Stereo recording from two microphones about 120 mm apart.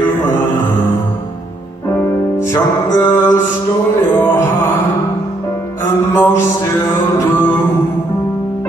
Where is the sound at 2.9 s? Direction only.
20° left (ahead or behind).